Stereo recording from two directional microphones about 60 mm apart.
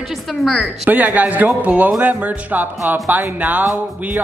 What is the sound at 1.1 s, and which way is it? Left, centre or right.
Speech, right.